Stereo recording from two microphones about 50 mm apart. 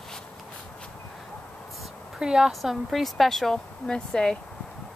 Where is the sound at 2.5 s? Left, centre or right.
Centre.